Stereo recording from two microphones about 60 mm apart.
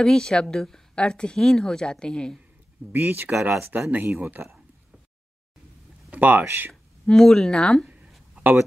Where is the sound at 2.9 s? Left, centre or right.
Right.